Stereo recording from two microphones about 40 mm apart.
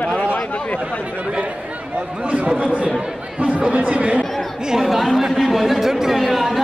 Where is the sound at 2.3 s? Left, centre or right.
Right.